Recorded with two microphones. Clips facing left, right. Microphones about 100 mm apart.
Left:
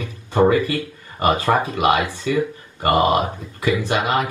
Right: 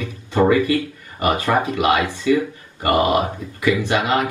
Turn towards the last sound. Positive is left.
turn(degrees=20)  # may be behind; listen again after turning